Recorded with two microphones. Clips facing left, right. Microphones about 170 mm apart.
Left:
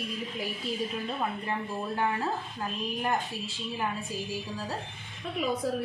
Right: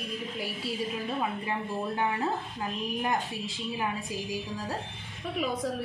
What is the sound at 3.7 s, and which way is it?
A woman's voice, 15° right (ahead or behind).